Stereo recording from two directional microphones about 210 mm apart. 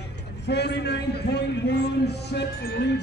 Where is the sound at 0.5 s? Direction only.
55° left (ahead or behind).